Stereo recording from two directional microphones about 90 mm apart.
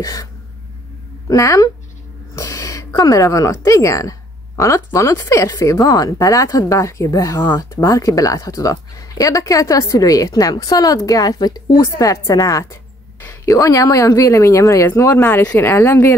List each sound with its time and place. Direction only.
0.0 s speech: 40° left (ahead or behind)
15.0 s speech: 25° left (ahead or behind)